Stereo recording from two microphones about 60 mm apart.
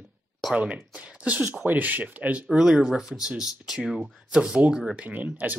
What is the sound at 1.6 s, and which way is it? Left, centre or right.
Speech, right.